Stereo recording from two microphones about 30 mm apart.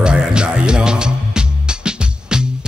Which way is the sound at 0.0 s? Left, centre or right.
Right.